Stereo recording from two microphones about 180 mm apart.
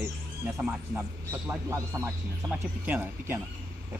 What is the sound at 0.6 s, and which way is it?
Speech, 5° right (ahead or behind).